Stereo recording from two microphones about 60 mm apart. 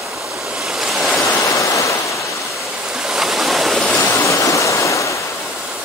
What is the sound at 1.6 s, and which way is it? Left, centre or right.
Ocean, left.